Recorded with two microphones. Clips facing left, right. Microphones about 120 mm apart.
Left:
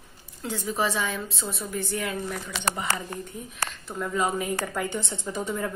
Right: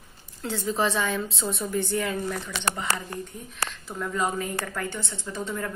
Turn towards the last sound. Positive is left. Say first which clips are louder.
# left 2 dB
turn(degrees=10)  # may be behind; listen again after turning